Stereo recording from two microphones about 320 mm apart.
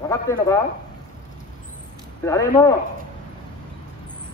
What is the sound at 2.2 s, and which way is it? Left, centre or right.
Speech, centre.